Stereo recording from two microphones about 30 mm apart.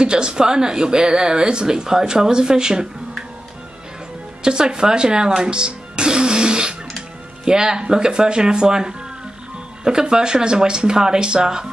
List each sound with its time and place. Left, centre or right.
0.0 s speech: right
4.4 s speech: right